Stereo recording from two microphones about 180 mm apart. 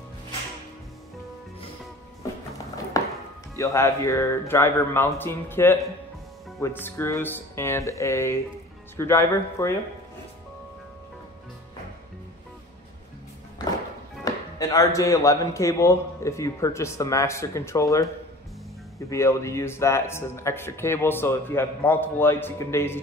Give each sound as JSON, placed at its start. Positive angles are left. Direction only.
{"t": 2.9, "sound": "music", "side_deg": 20}
{"t": 3.5, "sound": "a man's voice", "side_deg": 15}
{"t": 14.2, "sound": "a man's voice", "side_deg": 20}